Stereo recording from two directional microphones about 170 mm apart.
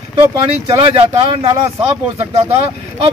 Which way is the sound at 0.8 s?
35° right (ahead or behind).